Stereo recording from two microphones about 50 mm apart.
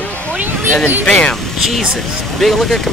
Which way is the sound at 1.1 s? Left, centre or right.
Left.